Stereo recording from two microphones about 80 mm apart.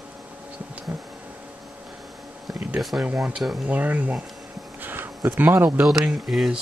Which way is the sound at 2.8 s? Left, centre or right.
Centre.